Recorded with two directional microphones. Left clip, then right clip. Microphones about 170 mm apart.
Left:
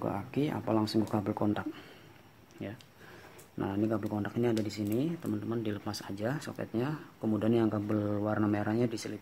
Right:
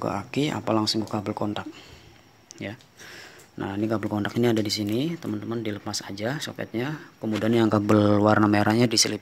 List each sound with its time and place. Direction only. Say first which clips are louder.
0.0 s speech: right 7 dB; 10° right (ahead or behind)
3.5 s speech: right 5 dB; 10° right (ahead or behind)
4.0 s speech: right 8 dB; 25° right (ahead or behind); by 7.5 s 5° right (ahead or behind)
7.5 s speech: right 10 dB; 20° right (ahead or behind)